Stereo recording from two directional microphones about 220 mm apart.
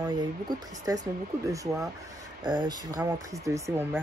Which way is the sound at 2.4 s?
20° right (ahead or behind).